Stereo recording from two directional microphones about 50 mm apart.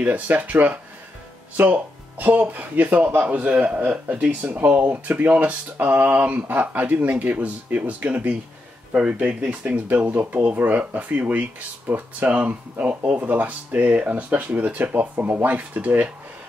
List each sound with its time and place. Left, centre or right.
0.0 s speech: right
9.3 s speech: centre
9.8 s speech: right